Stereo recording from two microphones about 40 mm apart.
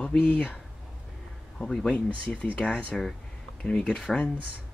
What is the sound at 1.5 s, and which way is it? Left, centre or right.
Speech, left.